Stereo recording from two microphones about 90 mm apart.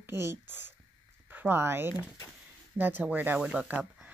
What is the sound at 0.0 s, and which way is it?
Speech, 25° right (ahead or behind).